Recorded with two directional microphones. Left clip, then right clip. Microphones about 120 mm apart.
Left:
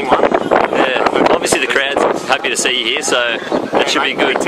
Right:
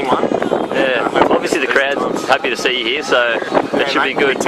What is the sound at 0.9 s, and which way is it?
Speech, 25° left (ahead or behind).